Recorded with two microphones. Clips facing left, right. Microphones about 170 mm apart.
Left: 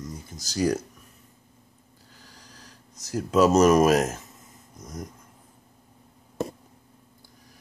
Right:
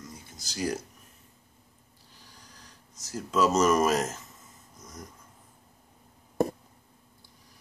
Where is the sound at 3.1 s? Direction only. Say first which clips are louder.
Left 6 dB; 60° left (ahead or behind).